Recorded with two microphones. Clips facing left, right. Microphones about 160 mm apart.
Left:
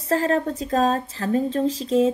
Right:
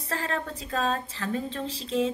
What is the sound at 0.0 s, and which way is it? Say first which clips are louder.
Speech: left 10 dB; 40° left (ahead or behind).